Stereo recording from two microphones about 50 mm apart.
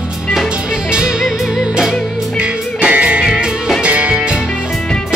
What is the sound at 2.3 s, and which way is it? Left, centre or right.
Music, right.